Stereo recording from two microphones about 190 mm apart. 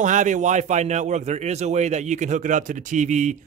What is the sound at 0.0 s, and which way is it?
Speech, 40° right (ahead or behind).